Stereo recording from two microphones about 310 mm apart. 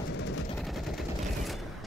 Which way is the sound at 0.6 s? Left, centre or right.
Centre.